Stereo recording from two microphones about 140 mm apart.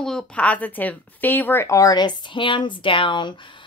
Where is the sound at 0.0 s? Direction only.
5° left (ahead or behind).